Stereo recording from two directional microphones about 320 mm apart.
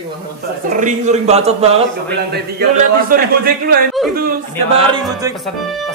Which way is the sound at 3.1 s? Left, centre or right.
Right.